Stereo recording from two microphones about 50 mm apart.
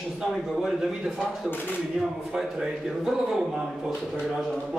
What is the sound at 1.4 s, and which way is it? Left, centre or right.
Speech, left.